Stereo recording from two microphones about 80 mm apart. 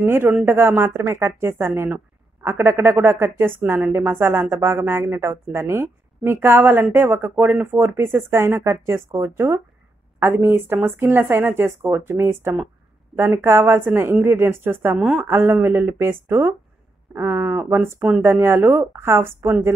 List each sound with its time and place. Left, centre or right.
0.0 s a woman's voice: right